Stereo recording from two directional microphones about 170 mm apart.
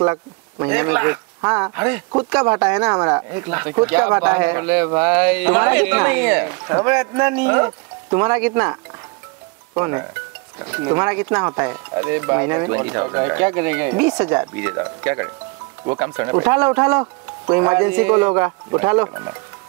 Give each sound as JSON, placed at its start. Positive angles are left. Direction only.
{"t": 0.0, "sound": "speech", "side_deg": -15}
{"t": 9.8, "sound": "speech", "side_deg": -15}